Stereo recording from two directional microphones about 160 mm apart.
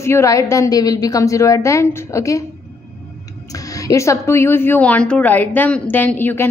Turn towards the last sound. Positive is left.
turn(degrees=10)  # may be behind; listen again after turning